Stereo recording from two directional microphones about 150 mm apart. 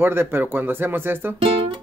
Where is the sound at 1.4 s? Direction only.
35° right (ahead or behind).